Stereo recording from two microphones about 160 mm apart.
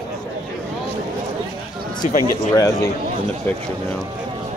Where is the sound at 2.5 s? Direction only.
20° left (ahead or behind).